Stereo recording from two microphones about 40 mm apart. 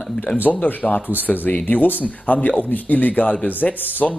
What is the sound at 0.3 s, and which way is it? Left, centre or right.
Speech, left.